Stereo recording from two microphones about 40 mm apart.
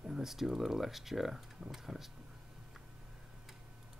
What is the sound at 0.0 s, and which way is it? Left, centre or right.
Speech, centre.